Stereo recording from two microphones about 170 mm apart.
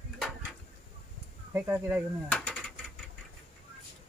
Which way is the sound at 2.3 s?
5° left (ahead or behind).